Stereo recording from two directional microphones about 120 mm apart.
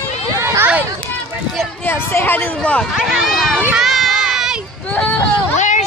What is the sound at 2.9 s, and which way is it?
Speech, centre (ahead or behind).